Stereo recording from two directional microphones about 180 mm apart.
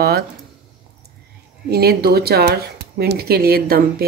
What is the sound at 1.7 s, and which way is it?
Speech, 60° right (ahead or behind).